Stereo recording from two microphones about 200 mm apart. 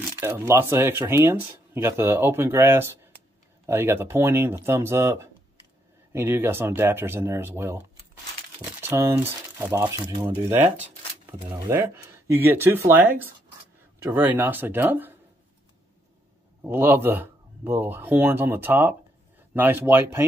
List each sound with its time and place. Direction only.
0.2 s speech: 10° right (ahead or behind)
16.6 s speech: 10° right (ahead or behind)